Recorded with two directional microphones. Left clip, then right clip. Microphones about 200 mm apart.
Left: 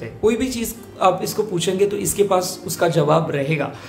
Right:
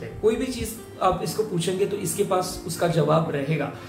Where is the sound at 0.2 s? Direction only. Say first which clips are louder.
Left 4 dB; 35° left (ahead or behind).